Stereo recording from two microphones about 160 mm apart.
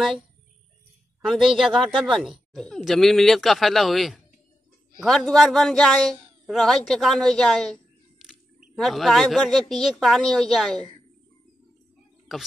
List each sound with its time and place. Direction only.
1.2 s speech: centre (ahead or behind)
12.3 s speech: centre (ahead or behind)